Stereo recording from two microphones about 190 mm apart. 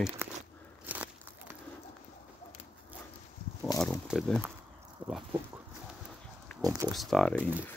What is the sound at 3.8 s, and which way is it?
Speech, 5° left (ahead or behind).